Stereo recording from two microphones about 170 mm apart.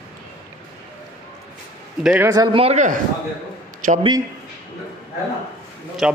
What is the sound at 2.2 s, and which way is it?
Speech, 25° right (ahead or behind).